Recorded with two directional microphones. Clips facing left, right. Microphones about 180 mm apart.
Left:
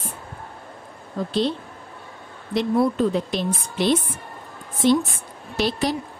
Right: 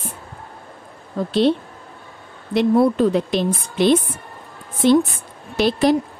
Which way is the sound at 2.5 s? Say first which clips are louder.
Right 5 dB; 65° right (ahead or behind).